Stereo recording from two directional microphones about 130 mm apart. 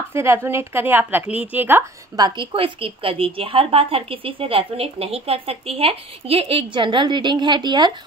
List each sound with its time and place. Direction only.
0.1 s speech: 20° right (ahead or behind)
2.1 s a woman's voice: 35° right (ahead or behind)